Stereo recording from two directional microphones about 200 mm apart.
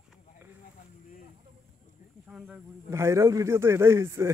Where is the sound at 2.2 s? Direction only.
5° right (ahead or behind).